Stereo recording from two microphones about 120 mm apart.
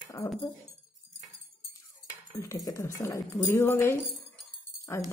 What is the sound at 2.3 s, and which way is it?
A woman's voice, 25° left (ahead or behind).